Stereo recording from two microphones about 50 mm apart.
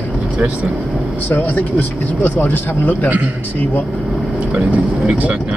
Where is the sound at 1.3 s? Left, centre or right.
Left.